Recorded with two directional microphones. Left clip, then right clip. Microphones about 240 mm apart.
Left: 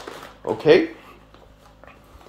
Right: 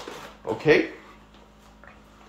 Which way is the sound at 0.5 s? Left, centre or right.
Left.